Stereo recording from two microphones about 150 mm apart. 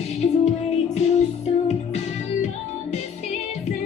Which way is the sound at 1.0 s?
50° left (ahead or behind).